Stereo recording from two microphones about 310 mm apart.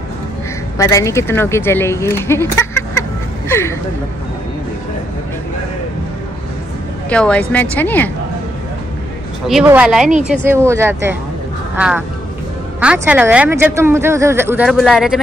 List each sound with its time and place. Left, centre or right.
0.7 s speech: centre
7.1 s speech: centre
9.5 s speech: centre